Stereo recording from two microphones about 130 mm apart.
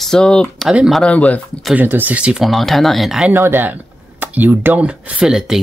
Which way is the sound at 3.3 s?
15° right (ahead or behind).